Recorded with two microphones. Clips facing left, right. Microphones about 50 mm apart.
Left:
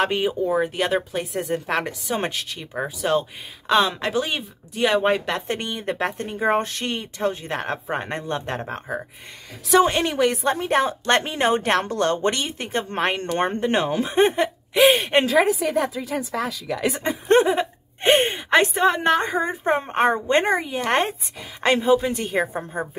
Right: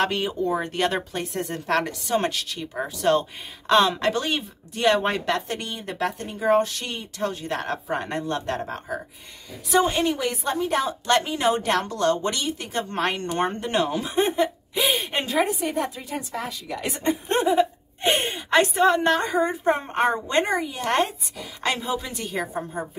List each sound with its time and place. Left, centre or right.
0.0 s speech: centre
5.5 s a woman's voice: left
9.7 s a woman's voice: left
9.9 s a woman's voice: left
15.3 s a woman's voice: left
17.5 s a woman's voice: left